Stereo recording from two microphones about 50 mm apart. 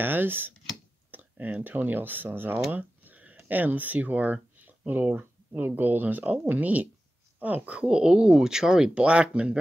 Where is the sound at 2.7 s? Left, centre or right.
Right.